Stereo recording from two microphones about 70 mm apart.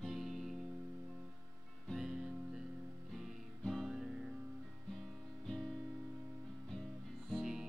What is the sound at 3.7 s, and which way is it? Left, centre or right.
Guitar, centre.